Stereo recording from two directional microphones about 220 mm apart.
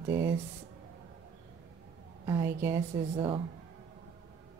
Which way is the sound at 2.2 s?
15° right (ahead or behind).